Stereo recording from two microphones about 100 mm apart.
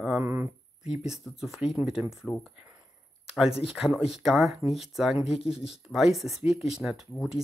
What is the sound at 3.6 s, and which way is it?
Speech, 5° right (ahead or behind).